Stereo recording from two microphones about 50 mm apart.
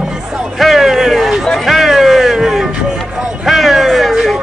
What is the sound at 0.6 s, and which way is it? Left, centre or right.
Music, centre.